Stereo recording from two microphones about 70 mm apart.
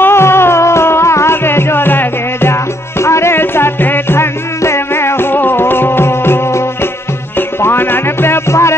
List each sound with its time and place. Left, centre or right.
0.0 s music: left